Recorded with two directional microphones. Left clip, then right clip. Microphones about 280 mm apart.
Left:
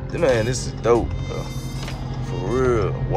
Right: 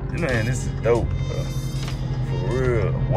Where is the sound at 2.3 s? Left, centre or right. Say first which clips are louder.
Left 3 dB; centre.